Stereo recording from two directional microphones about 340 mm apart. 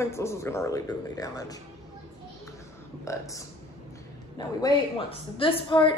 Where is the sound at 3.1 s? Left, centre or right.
Centre.